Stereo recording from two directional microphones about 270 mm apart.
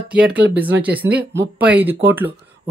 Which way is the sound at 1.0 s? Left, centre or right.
Right.